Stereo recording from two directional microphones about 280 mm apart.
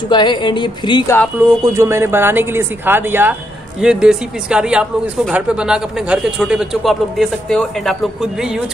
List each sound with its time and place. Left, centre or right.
0.1 s speech: centre
1.6 s speech: centre